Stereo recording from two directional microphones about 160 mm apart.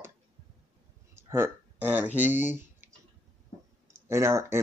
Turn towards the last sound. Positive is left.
turn(degrees=-15)  # may be behind; listen again after turning